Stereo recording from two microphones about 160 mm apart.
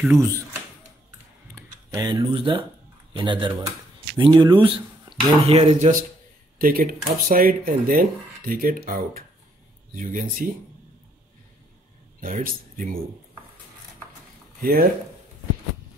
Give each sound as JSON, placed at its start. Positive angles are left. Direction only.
{"t": 0.0, "sound": "speech", "side_deg": -15}
{"t": 1.5, "sound": "a sound", "side_deg": -20}
{"t": 3.1, "sound": "speech", "side_deg": -30}
{"t": 5.5, "sound": "speech", "side_deg": -40}
{"t": 6.6, "sound": "speech", "side_deg": -65}
{"t": 9.9, "sound": "speech", "side_deg": -55}
{"t": 12.2, "sound": "speech", "side_deg": -60}
{"t": 14.6, "sound": "speech", "side_deg": -70}